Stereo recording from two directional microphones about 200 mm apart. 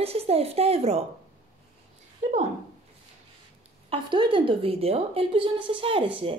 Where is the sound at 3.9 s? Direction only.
25° right (ahead or behind).